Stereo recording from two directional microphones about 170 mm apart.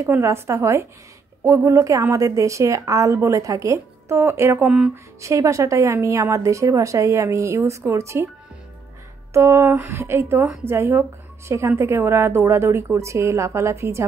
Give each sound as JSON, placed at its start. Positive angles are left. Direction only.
{"t": 0.0, "sound": "a woman's voice", "side_deg": -15}
{"t": 9.3, "sound": "a woman's voice", "side_deg": -15}